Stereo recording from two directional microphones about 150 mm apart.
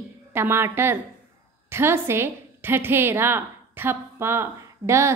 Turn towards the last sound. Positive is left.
turn(degrees=-20)  # may be behind; listen again after turning